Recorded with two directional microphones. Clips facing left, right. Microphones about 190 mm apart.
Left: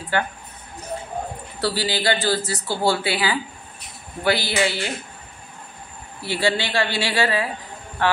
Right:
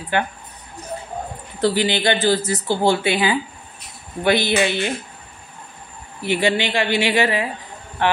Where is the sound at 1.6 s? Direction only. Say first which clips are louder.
Right 4 dB; 20° right (ahead or behind).